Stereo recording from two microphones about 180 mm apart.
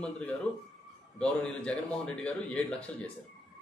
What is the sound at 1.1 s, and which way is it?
A man's voice, 5° left (ahead or behind).